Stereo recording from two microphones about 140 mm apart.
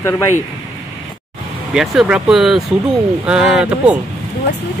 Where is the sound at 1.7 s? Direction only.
5° right (ahead or behind).